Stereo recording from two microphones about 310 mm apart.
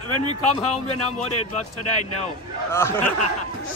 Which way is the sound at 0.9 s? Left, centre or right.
Left.